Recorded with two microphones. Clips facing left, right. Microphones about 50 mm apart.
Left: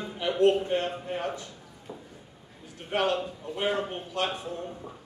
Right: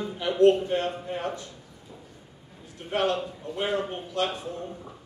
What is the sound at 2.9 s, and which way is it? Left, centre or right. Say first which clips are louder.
A man's voice: right 1 dB; left.